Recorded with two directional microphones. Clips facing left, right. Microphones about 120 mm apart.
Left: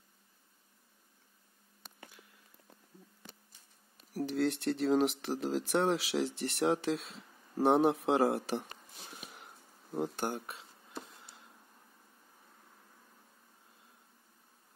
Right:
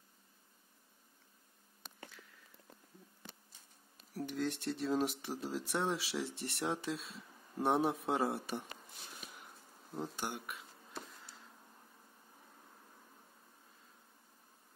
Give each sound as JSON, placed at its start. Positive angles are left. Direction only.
{"t": 4.1, "sound": "speech", "side_deg": 90}
{"t": 9.9, "sound": "speech", "side_deg": 60}
{"t": 10.3, "sound": "speech", "side_deg": 30}